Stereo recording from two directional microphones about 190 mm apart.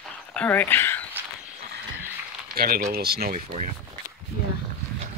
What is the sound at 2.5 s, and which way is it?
Speech, 50° right (ahead or behind).